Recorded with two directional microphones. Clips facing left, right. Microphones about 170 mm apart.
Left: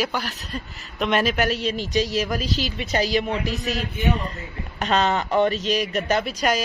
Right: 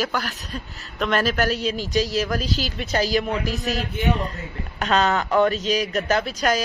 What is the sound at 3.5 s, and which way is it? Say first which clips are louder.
Mantra: right 1 dB; 40° right (ahead or behind).